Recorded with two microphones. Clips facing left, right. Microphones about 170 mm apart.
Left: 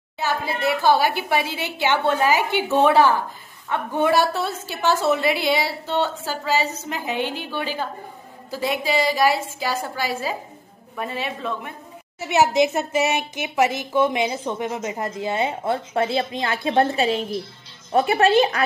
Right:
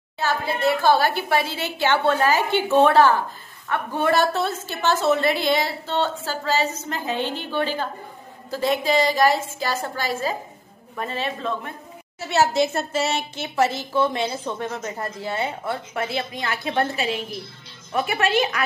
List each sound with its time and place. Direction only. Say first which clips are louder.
0.2 s a woman's voice: right 1 dB; 15° left (ahead or behind); by 18.6 s 30° left (ahead or behind)